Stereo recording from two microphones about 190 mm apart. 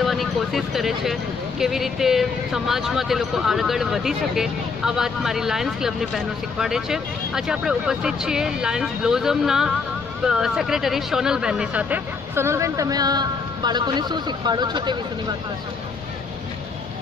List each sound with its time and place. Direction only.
0.0 s speech: centre (ahead or behind); by 15.0 s 25° right (ahead or behind)